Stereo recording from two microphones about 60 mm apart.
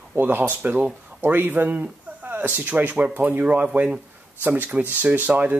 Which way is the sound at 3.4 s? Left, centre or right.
Right.